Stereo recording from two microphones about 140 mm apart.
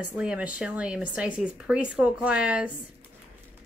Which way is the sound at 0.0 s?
10° right (ahead or behind).